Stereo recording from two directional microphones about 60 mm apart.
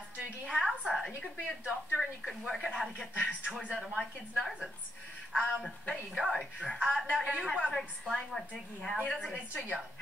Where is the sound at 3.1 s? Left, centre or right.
Centre.